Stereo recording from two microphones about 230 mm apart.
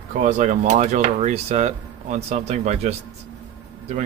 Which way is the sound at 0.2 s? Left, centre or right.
Right.